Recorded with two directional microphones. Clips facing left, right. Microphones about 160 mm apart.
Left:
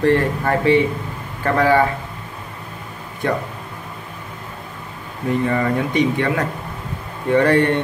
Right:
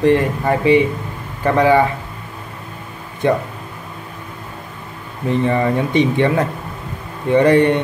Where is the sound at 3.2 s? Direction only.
20° right (ahead or behind).